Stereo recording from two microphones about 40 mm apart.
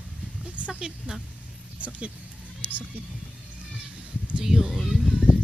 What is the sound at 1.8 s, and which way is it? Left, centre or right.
Speech, right.